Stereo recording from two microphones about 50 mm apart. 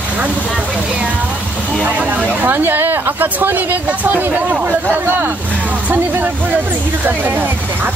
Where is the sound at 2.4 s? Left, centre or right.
Right.